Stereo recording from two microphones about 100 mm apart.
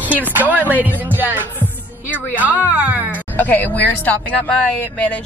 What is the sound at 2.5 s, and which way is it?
Speech, 15° right (ahead or behind).